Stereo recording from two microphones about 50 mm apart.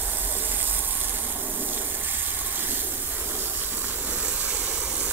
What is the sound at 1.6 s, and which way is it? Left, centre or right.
Water, right.